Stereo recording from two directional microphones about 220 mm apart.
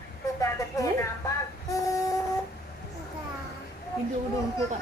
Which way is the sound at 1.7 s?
15° left (ahead or behind).